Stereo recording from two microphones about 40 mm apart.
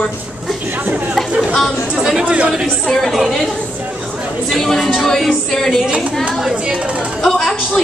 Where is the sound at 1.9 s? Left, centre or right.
Centre.